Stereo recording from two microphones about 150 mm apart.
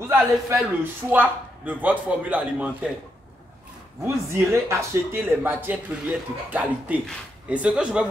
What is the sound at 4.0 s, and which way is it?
Speech, 15° right (ahead or behind).